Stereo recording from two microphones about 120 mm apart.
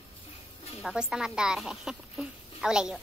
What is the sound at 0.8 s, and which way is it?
Speech, 5° right (ahead or behind).